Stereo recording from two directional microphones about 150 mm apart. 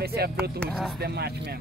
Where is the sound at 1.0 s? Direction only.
90° right.